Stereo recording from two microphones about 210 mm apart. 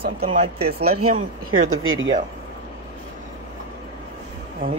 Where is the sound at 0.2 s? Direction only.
30° right (ahead or behind).